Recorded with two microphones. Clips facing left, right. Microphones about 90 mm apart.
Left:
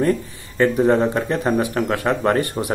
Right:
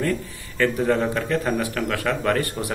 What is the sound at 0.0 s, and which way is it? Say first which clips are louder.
Speech: left 5 dB; 20° left (ahead or behind).